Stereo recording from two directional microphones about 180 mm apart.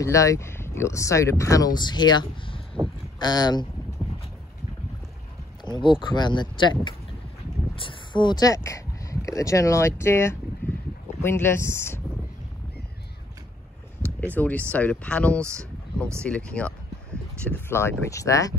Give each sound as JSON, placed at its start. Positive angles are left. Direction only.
{"t": 0.0, "sound": "speech", "side_deg": 15}
{"t": 5.7, "sound": "speech", "side_deg": 25}
{"t": 10.6, "sound": "boat", "side_deg": 10}
{"t": 11.2, "sound": "speech", "side_deg": 15}
{"t": 14.0, "sound": "speech", "side_deg": 10}